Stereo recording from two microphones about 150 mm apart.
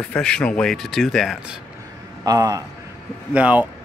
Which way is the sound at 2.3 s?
25° right (ahead or behind).